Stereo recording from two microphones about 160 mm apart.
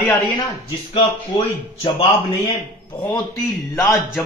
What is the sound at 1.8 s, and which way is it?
Speech, 35° left (ahead or behind).